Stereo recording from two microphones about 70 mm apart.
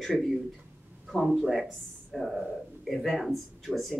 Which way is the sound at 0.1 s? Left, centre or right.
Centre.